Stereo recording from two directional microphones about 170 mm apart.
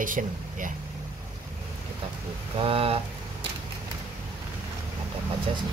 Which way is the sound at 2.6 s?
35° right (ahead or behind).